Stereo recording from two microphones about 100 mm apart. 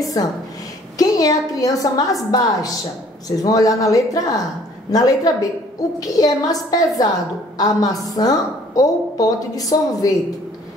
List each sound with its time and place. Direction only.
0.0 s a woman's voice: 35° left (ahead or behind)